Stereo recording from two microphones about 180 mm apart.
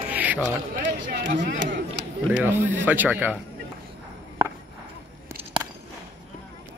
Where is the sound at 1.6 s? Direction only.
85° right.